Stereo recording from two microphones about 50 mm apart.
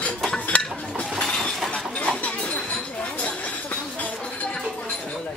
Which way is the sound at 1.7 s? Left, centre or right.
Left.